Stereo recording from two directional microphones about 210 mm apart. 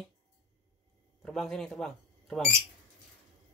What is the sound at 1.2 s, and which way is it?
Speech, centre (ahead or behind).